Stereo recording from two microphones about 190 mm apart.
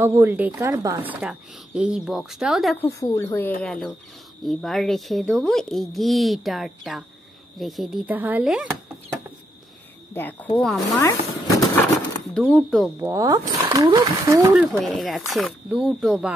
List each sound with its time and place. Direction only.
0.0 s a woman's voice: 15° right (ahead or behind)
2.8 s speech: 15° left (ahead or behind); by 8.7 s 5° right (ahead or behind)
10.1 s speech: 10° left (ahead or behind)
11.0 s a sound: 15° left (ahead or behind)
12.4 s speech: 5° right (ahead or behind)
13.0 s a woman's voice: 15° right (ahead or behind)
14.7 s speech: centre (ahead or behind)